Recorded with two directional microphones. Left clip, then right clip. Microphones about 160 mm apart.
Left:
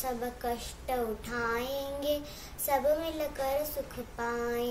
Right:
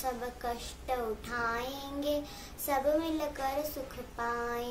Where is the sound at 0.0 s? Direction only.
15° right (ahead or behind).